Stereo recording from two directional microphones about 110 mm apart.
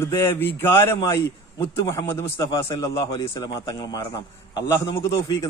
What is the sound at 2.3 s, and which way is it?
A man's voice, 40° left (ahead or behind).